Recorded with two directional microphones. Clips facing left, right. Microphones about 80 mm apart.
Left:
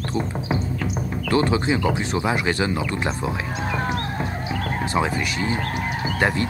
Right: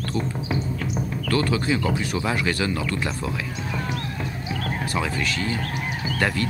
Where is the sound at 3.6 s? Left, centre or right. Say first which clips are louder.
Left 4 dB; left.